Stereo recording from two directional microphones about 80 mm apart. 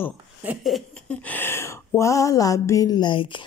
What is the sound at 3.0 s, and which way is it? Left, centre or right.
Speech, left.